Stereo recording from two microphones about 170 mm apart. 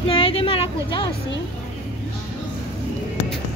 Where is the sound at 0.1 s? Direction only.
35° left (ahead or behind).